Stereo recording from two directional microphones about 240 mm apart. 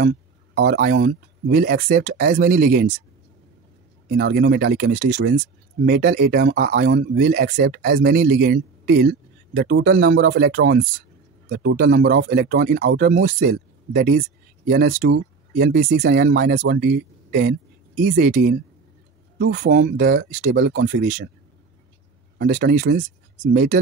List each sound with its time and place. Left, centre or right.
0.6 s speech: right
4.1 s speech: right
7.3 s speech: right
16.0 s speech: right
20.5 s speech: right
22.4 s speech: right